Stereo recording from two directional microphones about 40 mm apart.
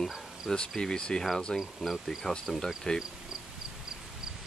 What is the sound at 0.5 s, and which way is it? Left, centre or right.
Speech, centre.